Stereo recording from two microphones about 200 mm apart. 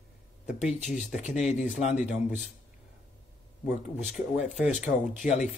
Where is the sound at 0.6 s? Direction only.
5° right (ahead or behind).